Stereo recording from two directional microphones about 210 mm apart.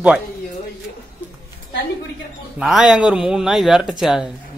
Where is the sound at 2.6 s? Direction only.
Centre (ahead or behind).